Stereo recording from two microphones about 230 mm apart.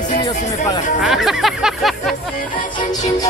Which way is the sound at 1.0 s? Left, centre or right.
Centre.